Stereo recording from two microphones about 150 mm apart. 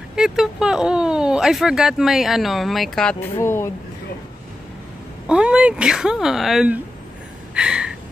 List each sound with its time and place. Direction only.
0.1 s speech: 5° right (ahead or behind)
3.3 s speech: 15° left (ahead or behind)
5.2 s speech: 5° right (ahead or behind)
7.5 s a sound: 5° right (ahead or behind)